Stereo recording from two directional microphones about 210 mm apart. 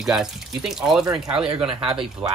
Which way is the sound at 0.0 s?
Centre (ahead or behind).